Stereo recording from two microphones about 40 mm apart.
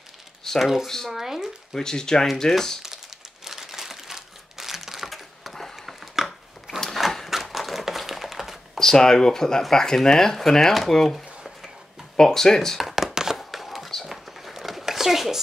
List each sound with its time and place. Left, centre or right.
0.6 s speech: centre
0.8 s speech: centre
1.1 s speech: centre
1.7 s speech: centre
3.4 s crumpling: centre
6.8 s a sound: centre
7.2 s typewriter: centre
8.7 s speech: centre
12.8 s a sound: centre
13.4 s a sound: centre